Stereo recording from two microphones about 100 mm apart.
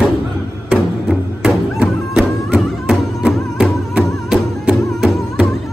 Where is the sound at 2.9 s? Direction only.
5° right (ahead or behind).